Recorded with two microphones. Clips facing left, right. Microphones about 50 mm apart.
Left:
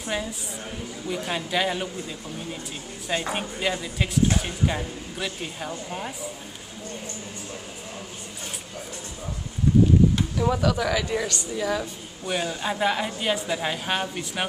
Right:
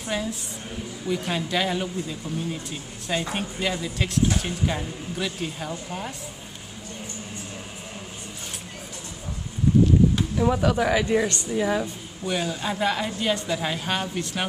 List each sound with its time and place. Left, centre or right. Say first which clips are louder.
0.0 s speech: right 1 dB; centre
10.6 s speech: right 2 dB; right
12.3 s a woman's voice: even; centre